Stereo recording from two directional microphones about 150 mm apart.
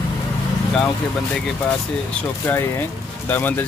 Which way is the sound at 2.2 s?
15° left (ahead or behind).